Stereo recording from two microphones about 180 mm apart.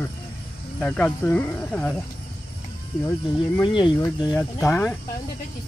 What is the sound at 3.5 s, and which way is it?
Speech, 25° left (ahead or behind).